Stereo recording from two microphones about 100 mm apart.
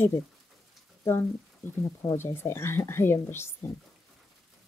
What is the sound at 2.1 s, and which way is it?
Speech, 25° left (ahead or behind).